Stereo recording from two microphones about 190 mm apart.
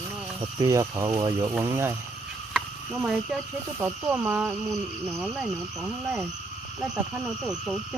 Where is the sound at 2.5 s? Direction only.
5° right (ahead or behind).